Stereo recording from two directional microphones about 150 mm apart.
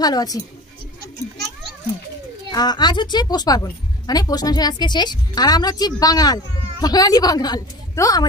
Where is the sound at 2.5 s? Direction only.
25° left (ahead or behind).